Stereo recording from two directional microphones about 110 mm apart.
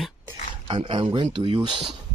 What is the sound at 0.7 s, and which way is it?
Speech, 55° right (ahead or behind).